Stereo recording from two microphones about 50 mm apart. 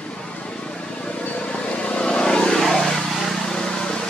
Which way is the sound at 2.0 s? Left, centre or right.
Centre.